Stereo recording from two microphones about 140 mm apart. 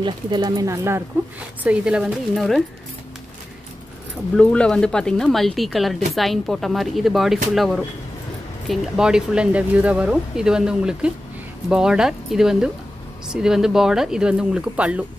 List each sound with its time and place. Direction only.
0.0 s speech: 30° right (ahead or behind)
1.6 s speech: 5° right (ahead or behind)
4.4 s speech: 5° left (ahead or behind); by 15.0 s 10° right (ahead or behind)